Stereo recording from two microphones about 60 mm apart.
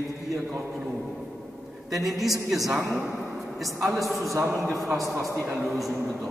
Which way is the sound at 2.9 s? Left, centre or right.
Centre.